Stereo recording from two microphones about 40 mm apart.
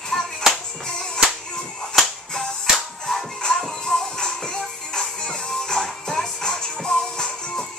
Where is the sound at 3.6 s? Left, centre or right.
Centre.